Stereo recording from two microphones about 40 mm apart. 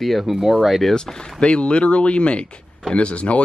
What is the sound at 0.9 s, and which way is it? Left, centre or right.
Speech, centre.